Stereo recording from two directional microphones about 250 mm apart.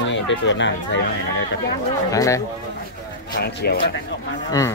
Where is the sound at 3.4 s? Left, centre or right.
Left.